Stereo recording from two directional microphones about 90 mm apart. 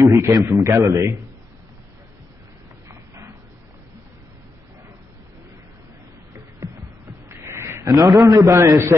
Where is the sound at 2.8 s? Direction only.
35° right (ahead or behind).